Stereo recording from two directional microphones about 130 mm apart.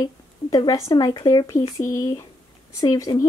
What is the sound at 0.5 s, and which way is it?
Speech, 30° left (ahead or behind).